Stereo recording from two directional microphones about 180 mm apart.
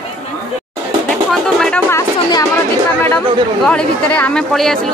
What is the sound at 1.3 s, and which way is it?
Music, 5° left (ahead or behind).